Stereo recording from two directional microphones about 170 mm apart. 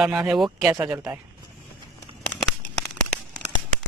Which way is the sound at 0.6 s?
15° right (ahead or behind).